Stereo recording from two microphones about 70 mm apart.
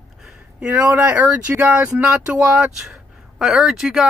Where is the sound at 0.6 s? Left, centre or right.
Right.